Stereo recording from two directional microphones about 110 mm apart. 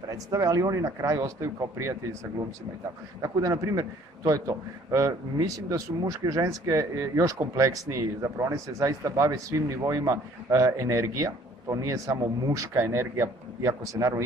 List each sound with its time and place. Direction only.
0.1 s a man's voice: 30° right (ahead or behind)
3.2 s a man's voice: 35° right (ahead or behind)